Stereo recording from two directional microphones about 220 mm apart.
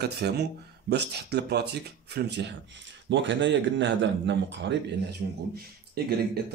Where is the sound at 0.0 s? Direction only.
50° right (ahead or behind).